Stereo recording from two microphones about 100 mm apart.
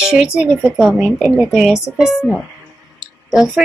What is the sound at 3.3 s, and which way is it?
Speech, centre (ahead or behind).